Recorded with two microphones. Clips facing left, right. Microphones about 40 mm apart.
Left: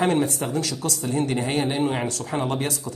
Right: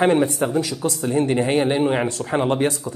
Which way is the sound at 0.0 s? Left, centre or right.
Right.